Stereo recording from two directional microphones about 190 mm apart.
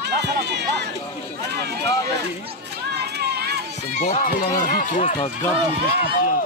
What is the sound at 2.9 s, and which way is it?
Run, 60° right (ahead or behind).